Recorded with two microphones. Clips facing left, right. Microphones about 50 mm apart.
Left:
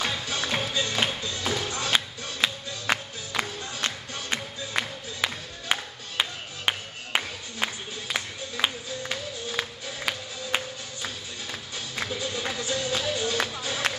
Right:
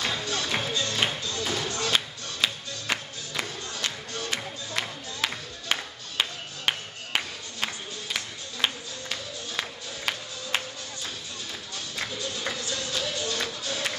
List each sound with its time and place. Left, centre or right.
0.2 s music: centre
11.9 s music: left